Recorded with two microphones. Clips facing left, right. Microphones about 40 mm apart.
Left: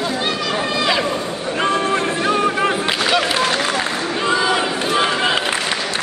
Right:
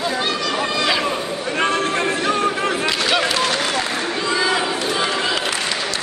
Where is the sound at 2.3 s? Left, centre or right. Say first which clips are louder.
Left 2 dB; centre; by 5.5 s left.